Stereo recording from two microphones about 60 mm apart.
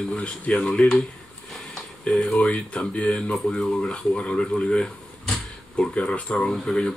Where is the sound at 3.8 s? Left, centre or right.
Centre.